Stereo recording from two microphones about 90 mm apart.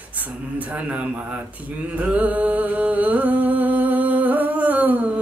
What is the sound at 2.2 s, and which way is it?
Music, 20° right (ahead or behind).